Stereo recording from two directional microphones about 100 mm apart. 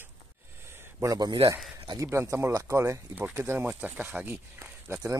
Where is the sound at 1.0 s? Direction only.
40° right (ahead or behind); by 5.1 s 20° right (ahead or behind).